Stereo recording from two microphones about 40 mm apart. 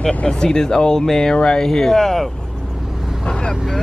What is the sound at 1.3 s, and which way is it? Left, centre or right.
Speech, left.